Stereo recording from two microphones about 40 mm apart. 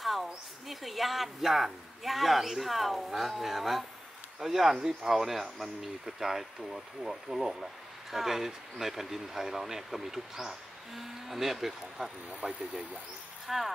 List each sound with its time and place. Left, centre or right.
0.0 s speech: centre
12.4 s speech: right
13.5 s speech: centre